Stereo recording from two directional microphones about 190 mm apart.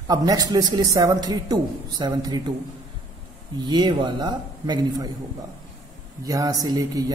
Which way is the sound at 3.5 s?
25° right (ahead or behind).